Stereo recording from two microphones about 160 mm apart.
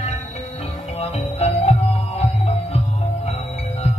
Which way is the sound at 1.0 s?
40° left (ahead or behind).